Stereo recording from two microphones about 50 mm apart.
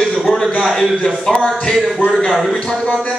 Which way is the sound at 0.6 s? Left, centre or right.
Centre.